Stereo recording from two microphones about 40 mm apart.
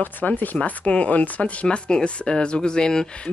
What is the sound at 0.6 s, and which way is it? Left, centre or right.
Speech, left.